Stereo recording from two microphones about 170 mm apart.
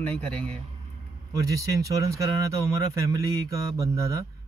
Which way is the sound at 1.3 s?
20° right (ahead or behind).